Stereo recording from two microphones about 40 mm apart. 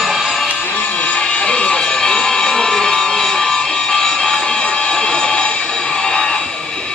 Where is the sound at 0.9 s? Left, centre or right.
Left.